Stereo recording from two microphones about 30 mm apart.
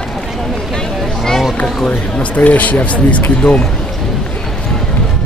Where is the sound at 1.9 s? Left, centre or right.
Left.